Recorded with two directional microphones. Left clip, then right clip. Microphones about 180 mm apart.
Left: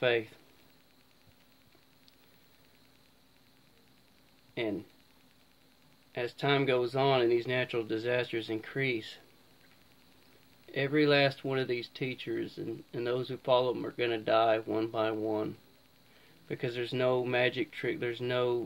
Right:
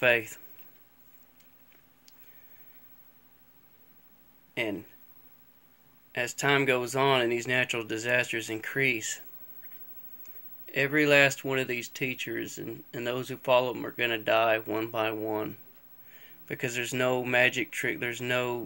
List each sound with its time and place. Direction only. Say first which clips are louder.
0.0 s speech: right 5 dB; 20° right (ahead or behind)
6.1 s speech: right 4 dB; 15° right (ahead or behind)
10.7 s speech: right 4 dB; 10° right (ahead or behind)